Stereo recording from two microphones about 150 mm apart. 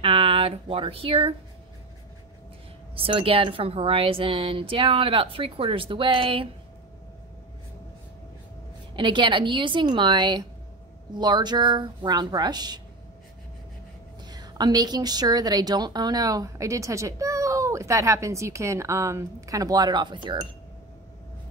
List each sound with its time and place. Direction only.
0.0 s speech: 40° right (ahead or behind)
3.0 s speech: 35° right (ahead or behind)
8.9 s a woman's voice: 30° right (ahead or behind)
14.2 s a woman's voice: 25° right (ahead or behind)